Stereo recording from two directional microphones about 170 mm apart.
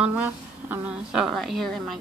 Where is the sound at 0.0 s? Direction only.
10° right (ahead or behind).